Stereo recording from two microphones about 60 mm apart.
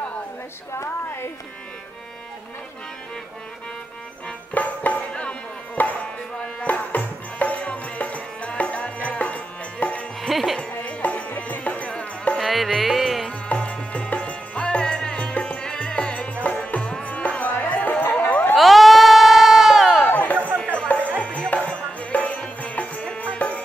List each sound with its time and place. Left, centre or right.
0.7 s a sound: left
4.6 s music: left
5.8 s tabla: left
6.4 s music: left
10.2 s music: centre
10.6 s music: left
12.4 s music: centre
13.5 s music: left
18.6 s sheep: centre
20.1 s a sound: left
20.6 s music: centre